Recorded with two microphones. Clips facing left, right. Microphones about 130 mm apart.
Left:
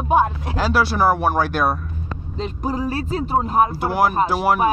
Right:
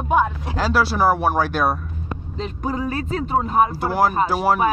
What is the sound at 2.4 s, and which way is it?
Speech, 30° left (ahead or behind).